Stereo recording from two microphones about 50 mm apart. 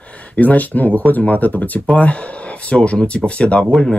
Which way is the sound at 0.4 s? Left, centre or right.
Left.